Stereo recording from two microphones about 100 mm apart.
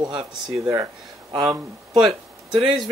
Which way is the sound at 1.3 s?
40° right (ahead or behind).